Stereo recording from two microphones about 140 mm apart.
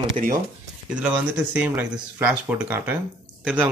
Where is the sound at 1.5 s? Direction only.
10° right (ahead or behind).